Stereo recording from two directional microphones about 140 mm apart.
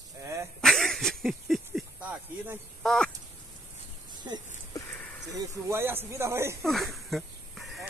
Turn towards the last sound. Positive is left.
turn(degrees=0)  # may be behind; listen again after turning